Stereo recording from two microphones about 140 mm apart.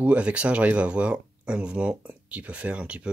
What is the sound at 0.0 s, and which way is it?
Speech, 10° right (ahead or behind).